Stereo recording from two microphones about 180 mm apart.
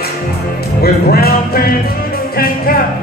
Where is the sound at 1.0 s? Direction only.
60° left (ahead or behind).